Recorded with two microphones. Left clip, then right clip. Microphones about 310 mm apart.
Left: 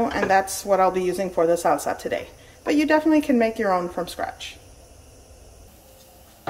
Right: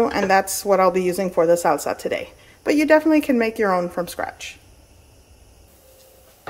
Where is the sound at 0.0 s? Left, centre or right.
Centre.